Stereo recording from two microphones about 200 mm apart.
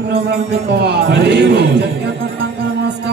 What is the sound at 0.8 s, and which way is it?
Music, 55° right (ahead or behind).